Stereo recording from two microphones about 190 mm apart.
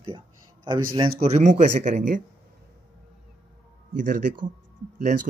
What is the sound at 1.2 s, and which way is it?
Speech, 40° right (ahead or behind).